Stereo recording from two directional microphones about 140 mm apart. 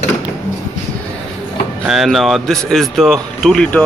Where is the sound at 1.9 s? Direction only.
Centre (ahead or behind).